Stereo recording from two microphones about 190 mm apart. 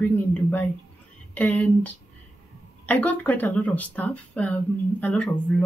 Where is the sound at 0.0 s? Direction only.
10° left (ahead or behind).